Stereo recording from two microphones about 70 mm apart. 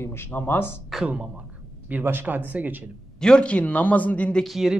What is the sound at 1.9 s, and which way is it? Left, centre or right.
Speech, right.